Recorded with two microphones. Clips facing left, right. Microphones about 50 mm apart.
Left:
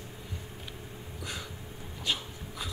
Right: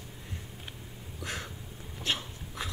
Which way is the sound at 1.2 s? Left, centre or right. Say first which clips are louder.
Right 2 dB; right.